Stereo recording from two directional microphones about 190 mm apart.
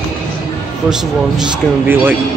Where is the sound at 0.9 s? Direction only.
5° right (ahead or behind).